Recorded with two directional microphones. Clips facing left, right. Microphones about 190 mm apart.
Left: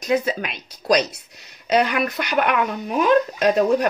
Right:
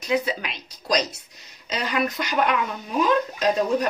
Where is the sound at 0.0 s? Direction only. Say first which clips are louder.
Left 3 dB; 50° left (ahead or behind).